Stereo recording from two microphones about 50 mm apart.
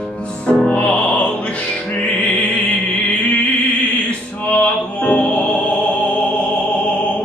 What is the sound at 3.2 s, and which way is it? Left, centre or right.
Mantra, left.